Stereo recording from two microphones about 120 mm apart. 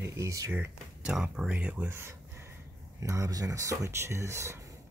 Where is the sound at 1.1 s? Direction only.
5° right (ahead or behind); by 4.7 s 25° right (ahead or behind).